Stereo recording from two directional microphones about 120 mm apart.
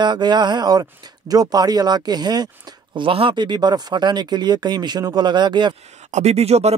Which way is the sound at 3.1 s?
50° right (ahead or behind).